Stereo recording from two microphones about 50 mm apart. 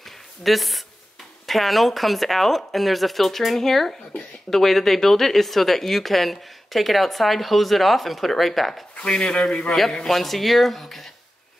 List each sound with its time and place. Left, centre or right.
0.4 s speech: centre
4.1 s a sound: left
4.5 s speech: centre
8.9 s speech: centre
10.0 s speech: centre